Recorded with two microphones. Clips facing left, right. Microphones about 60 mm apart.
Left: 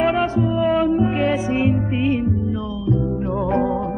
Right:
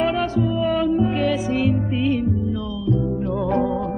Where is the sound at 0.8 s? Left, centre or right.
Left.